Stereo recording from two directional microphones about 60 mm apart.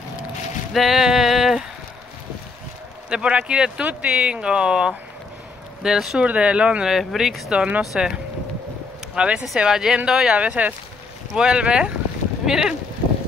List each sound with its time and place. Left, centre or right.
0.7 s a sound: centre
3.1 s speech: centre
6.9 s speech: centre
7.5 s speech: right
7.8 s speech: centre
9.1 s speech: centre